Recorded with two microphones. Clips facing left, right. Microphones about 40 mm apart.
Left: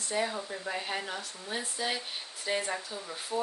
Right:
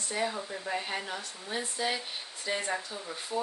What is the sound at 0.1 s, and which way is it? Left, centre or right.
Speech, centre.